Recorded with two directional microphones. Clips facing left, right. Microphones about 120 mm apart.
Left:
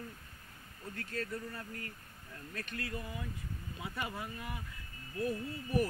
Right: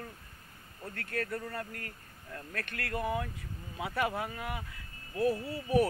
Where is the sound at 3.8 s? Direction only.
70° right (ahead or behind).